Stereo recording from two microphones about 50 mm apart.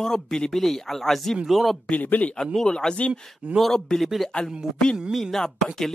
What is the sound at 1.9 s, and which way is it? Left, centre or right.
Speech, left.